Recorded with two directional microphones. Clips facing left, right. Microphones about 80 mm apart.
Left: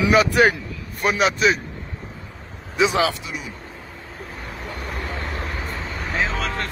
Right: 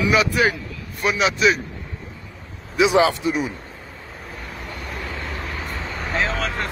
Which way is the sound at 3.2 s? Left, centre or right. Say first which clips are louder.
Right 10 dB; right.